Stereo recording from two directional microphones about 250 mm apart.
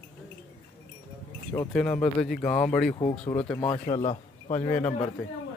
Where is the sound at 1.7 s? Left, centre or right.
Centre.